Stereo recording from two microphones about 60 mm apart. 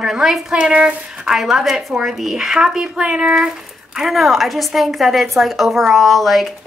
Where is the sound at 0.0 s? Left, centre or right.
Centre.